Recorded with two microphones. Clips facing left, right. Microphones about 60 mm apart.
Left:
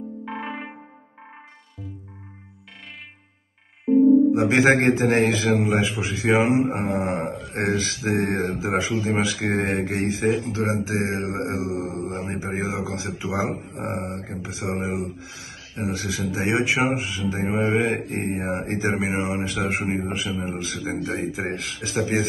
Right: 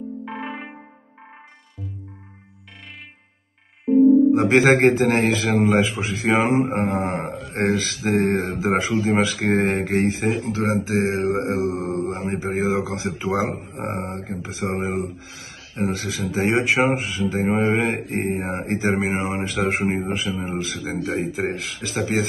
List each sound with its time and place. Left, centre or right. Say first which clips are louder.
0.2 s music: even; centre
3.8 s music: right 2 dB; centre
4.3 s speech: right 2 dB; right